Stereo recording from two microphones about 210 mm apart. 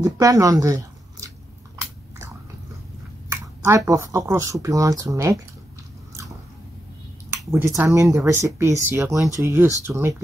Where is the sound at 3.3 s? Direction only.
15° right (ahead or behind).